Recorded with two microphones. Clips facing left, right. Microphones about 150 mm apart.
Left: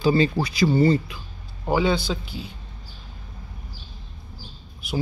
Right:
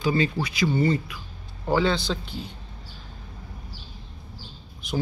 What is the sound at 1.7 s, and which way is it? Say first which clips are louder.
Speech: left 1 dB; 10° left (ahead or behind).